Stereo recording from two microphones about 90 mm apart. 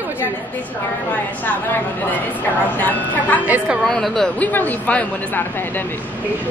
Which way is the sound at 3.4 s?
15° right (ahead or behind).